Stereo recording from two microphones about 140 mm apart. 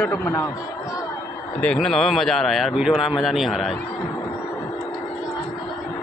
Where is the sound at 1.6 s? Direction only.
5° left (ahead or behind).